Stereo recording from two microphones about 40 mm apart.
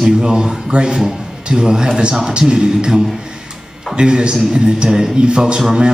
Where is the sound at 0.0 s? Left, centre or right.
Centre.